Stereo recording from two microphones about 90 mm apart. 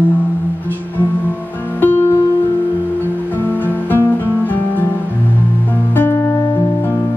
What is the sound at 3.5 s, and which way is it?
Music, 20° left (ahead or behind).